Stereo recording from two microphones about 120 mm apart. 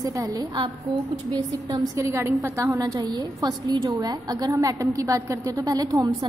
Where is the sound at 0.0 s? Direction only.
25° right (ahead or behind).